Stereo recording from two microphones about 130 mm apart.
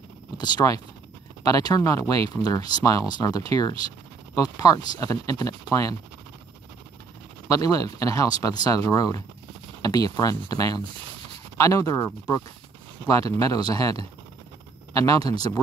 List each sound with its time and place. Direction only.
0.4 s speech: 30° left (ahead or behind)
7.4 s speech: 25° left (ahead or behind)